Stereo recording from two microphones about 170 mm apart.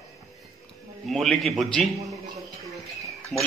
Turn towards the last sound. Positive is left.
turn(degrees=0)  # may be behind; listen again after turning